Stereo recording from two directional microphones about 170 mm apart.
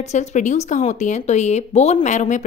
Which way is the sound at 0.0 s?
45° left (ahead or behind).